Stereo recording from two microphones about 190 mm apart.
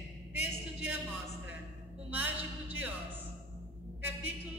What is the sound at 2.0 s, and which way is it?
Speech, 10° right (ahead or behind).